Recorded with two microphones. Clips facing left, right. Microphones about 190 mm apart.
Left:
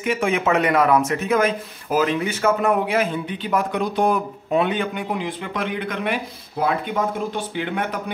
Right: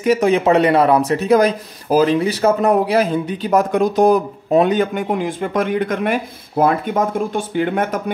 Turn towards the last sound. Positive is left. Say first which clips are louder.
# right 7 dB
turn(degrees=-45)  # may be behind; listen again after turning